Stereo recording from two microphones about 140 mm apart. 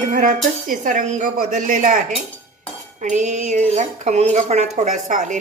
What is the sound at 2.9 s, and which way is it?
Speech, 60° right (ahead or behind).